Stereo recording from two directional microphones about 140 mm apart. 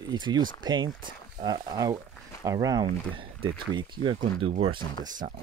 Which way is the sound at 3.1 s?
40° right (ahead or behind).